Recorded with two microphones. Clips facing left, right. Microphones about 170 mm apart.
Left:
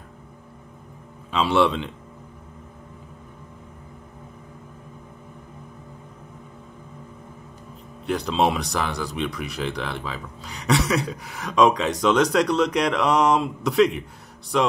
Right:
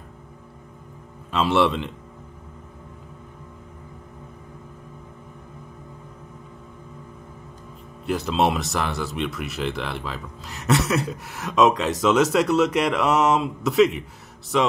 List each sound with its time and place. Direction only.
1.3 s speech: centre (ahead or behind)
8.0 s speech: centre (ahead or behind)